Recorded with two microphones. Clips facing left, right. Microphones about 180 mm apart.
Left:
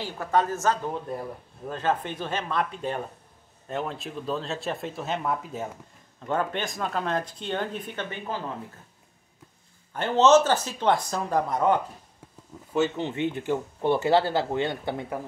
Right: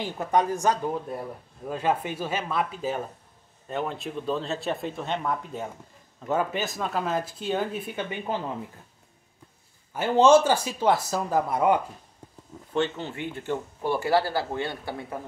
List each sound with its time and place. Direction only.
0.0 s speech: 15° right (ahead or behind)
9.9 s speech: 10° right (ahead or behind)
12.7 s speech: 5° left (ahead or behind)
13.0 s speech: 20° left (ahead or behind)